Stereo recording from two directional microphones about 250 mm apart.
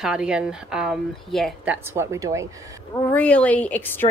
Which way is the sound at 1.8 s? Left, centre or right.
Centre.